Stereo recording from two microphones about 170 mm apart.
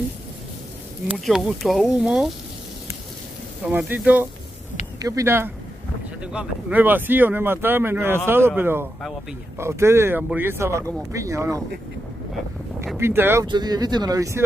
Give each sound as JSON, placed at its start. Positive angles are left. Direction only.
{"t": 1.1, "sound": "speech", "side_deg": 0}
{"t": 3.6, "sound": "speech", "side_deg": -10}
{"t": 12.9, "sound": "speech", "side_deg": -15}
{"t": 13.5, "sound": "speech", "side_deg": -25}